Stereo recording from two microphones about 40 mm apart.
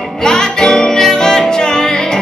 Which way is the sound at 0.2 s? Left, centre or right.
Centre.